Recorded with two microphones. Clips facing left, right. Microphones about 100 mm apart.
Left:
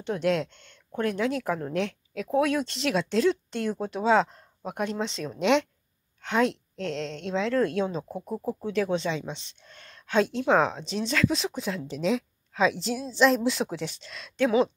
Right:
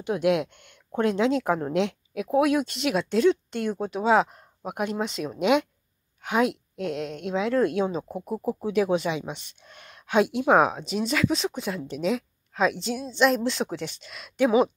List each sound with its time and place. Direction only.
0.0 s speech: 10° right (ahead or behind)
2.2 s a woman's voice: 5° right (ahead or behind)